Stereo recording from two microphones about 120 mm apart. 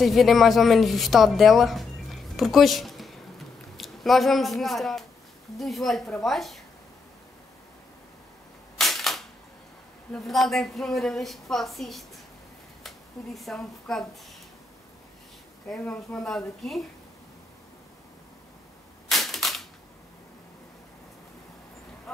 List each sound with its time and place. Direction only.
0.0 s a woman's voice: centre (ahead or behind)
8.7 s camera: centre (ahead or behind)
10.1 s a woman's voice: centre (ahead or behind)
15.7 s a woman's voice: 10° left (ahead or behind)
19.0 s cap gun: centre (ahead or behind)